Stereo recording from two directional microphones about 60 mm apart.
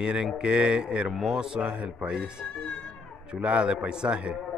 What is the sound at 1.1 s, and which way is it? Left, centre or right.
Speech, centre.